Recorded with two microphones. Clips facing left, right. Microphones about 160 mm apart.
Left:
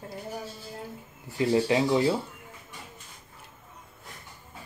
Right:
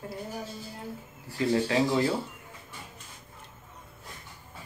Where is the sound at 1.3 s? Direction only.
20° left (ahead or behind).